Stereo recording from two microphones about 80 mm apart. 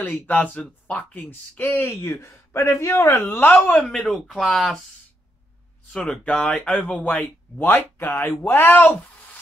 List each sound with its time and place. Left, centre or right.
0.0 s speech: left
1.6 s speech: left
3.8 s speech: centre
5.9 s speech: centre